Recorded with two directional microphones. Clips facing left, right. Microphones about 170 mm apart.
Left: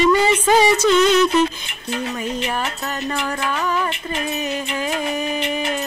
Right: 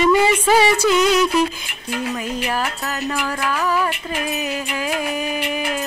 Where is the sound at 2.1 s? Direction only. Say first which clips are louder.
Even; 5° right (ahead or behind).